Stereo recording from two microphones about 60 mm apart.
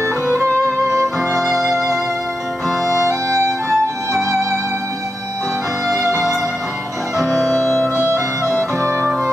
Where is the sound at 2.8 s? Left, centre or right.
Right.